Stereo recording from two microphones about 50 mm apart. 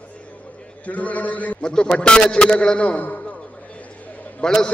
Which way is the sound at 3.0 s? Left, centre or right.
Left.